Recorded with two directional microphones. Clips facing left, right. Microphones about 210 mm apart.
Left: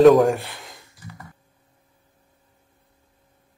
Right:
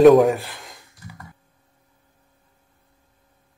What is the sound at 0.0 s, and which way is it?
Speech, centre (ahead or behind).